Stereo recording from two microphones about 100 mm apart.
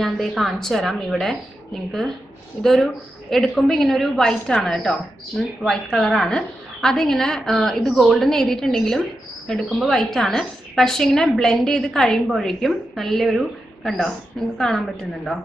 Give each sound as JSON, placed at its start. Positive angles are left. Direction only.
{"t": 0.0, "sound": "a woman's voice", "side_deg": 0}